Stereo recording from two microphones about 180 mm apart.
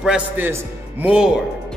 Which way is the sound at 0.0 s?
5° right (ahead or behind).